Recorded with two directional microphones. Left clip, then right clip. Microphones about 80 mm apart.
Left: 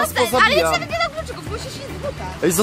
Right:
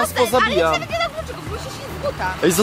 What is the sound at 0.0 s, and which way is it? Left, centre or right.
Speech, centre.